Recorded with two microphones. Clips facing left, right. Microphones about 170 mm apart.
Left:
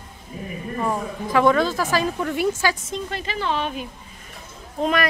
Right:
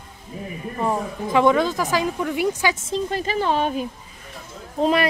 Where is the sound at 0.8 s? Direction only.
20° right (ahead or behind).